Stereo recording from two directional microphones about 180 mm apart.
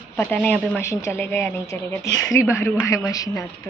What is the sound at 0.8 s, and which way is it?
Speech, 15° left (ahead or behind).